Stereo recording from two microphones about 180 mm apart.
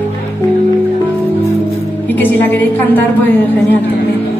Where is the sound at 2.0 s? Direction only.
10° left (ahead or behind).